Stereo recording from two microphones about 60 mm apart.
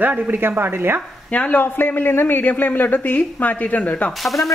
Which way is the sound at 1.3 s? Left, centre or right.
Left.